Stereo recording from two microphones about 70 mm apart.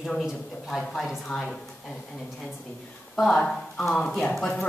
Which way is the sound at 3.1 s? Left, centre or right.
Centre.